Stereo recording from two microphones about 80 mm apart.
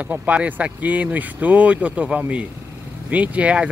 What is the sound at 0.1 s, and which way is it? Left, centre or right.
Speech, centre.